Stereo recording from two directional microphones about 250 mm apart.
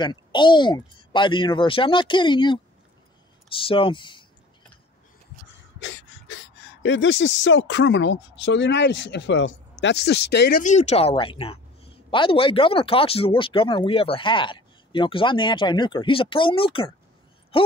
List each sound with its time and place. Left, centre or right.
0.0 s speech: centre
5.9 s speech: left
10.6 s speech: left